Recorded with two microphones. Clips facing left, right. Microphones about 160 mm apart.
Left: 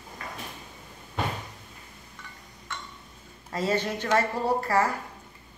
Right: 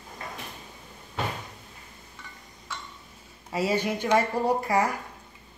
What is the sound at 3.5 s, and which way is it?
Speech, 10° right (ahead or behind).